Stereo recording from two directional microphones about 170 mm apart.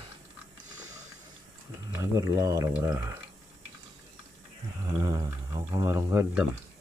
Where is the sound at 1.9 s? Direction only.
20° right (ahead or behind).